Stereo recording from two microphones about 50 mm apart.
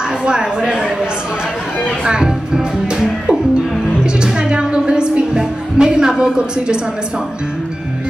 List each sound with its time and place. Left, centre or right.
0.2 s a woman's voice: centre
2.0 s speech: centre
4.0 s music: centre